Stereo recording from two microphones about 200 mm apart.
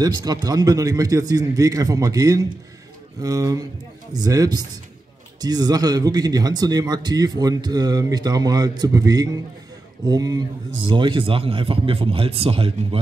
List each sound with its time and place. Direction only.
0.0 s a man's voice: 20° right (ahead or behind)